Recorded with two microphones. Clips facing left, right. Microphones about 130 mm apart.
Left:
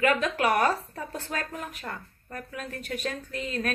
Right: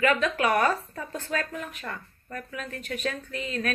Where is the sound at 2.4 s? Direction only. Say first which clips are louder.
Even; 40° left (ahead or behind).